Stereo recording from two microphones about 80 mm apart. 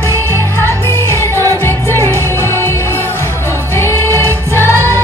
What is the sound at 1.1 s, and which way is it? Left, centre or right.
Music, left.